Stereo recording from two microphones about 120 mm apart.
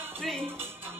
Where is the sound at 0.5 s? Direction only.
20° right (ahead or behind).